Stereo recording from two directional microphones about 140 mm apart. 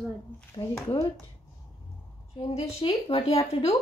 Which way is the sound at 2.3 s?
40° left (ahead or behind).